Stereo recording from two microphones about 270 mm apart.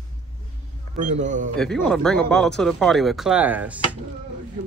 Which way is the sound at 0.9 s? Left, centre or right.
Right.